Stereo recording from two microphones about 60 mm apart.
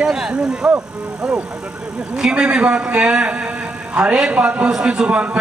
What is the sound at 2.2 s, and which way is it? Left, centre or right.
A man's voice, centre.